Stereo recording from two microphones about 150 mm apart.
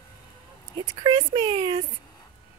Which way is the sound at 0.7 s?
35° right (ahead or behind).